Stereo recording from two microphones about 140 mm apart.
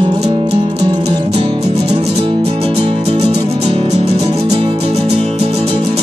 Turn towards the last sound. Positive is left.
turn(degrees=-45)  # may be behind; listen again after turning